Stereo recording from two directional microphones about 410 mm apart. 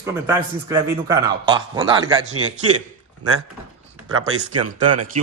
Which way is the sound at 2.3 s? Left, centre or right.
Right.